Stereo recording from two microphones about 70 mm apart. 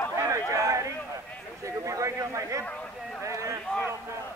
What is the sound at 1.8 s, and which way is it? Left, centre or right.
Speech, right.